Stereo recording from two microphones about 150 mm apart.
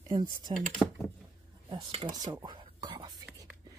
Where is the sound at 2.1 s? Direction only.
25° right (ahead or behind).